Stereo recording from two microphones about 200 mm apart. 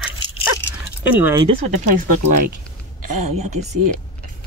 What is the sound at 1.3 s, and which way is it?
Speech, 30° right (ahead or behind).